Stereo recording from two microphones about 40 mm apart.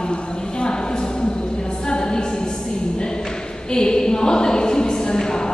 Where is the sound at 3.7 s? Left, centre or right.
Centre.